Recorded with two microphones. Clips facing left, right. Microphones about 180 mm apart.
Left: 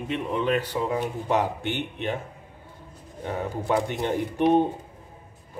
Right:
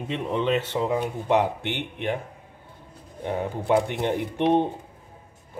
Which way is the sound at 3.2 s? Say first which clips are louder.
Right 2 dB; 15° right (ahead or behind).